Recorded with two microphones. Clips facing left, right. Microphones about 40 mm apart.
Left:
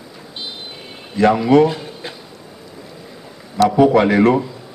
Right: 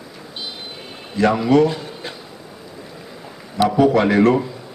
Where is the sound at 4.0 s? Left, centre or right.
Centre.